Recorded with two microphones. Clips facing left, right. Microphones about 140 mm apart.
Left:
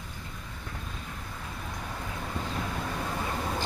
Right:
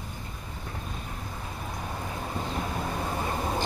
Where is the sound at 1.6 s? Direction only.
25° right (ahead or behind).